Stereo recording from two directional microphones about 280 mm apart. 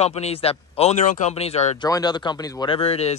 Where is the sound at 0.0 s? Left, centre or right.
Left.